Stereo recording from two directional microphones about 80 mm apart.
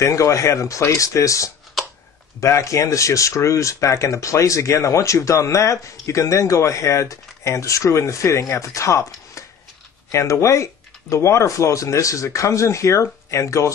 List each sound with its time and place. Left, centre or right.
0.0 s speech: left